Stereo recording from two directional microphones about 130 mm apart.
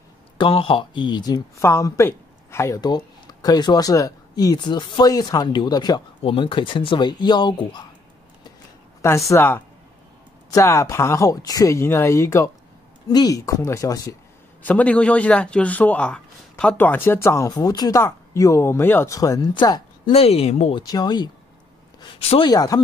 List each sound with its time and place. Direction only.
0.4 s speech: 40° left (ahead or behind)
9.0 s speech: 20° left (ahead or behind)
14.6 s a man's voice: 10° left (ahead or behind); by 19.8 s 30° left (ahead or behind)
20.1 s speech: 50° left (ahead or behind)
20.7 s speech: 30° left (ahead or behind)
22.0 s speech: 45° left (ahead or behind)
22.5 s speech: 30° left (ahead or behind)